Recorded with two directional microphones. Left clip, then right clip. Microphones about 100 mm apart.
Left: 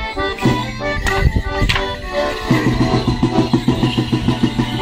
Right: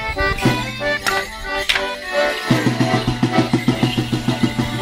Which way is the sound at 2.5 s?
25° right (ahead or behind).